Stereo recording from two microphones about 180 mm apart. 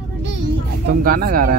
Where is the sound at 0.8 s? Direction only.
55° right (ahead or behind).